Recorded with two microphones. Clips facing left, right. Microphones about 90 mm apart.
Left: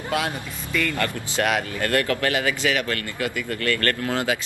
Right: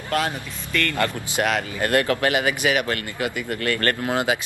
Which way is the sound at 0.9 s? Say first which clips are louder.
Right 1 dB; 20° right (ahead or behind).